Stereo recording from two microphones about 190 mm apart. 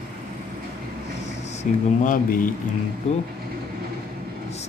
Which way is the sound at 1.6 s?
45° left (ahead or behind).